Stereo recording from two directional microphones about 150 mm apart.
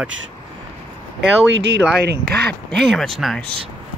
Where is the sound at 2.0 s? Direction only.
90° right.